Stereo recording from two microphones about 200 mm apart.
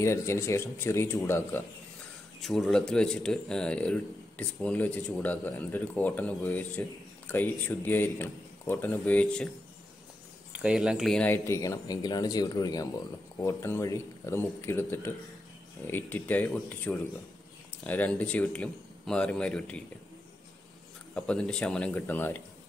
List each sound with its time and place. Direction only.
0.0 s a man's voice: 15° left (ahead or behind)
10.6 s a man's voice: 5° right (ahead or behind)
21.1 s speech: 5° left (ahead or behind)